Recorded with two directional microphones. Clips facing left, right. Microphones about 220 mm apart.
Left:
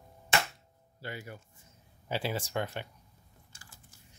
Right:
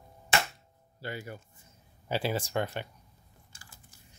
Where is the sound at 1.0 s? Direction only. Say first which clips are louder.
Right 3 dB; 35° right (ahead or behind).